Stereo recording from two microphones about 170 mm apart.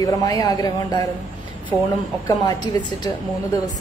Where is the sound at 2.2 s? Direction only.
25° left (ahead or behind).